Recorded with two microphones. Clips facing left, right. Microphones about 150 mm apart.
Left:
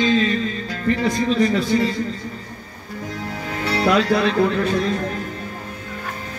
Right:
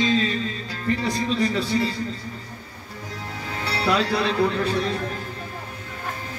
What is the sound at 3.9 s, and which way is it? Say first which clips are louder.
Speech: left 4 dB; 30° right (ahead or behind).